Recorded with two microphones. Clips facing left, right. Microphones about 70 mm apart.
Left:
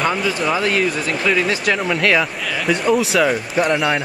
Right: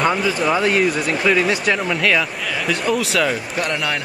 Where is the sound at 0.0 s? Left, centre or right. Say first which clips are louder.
Right 1 dB; centre.